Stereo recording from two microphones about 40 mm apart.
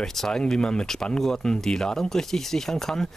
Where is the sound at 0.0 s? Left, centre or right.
Centre.